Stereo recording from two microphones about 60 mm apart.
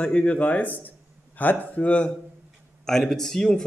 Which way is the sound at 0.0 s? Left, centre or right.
Centre.